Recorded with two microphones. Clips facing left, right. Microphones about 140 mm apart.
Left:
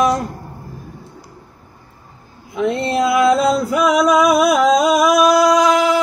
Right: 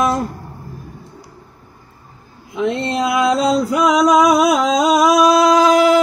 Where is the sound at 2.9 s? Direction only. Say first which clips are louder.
Left 4 dB; 20° right (ahead or behind).